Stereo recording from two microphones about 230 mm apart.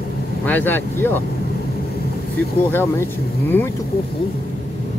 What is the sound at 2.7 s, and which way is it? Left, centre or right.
Speech, centre.